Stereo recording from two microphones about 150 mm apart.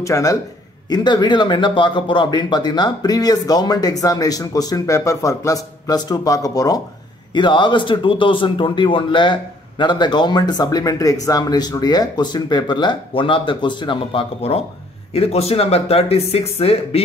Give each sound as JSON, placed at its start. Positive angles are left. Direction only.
{"t": 0.0, "sound": "a man's voice", "side_deg": 20}